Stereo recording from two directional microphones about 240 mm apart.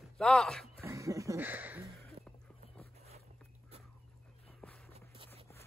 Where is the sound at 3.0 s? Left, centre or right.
Right.